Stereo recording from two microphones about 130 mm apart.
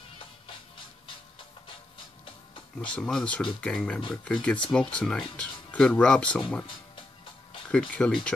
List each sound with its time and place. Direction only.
2.8 s speech: 5° left (ahead or behind)
7.6 s speech: 10° left (ahead or behind)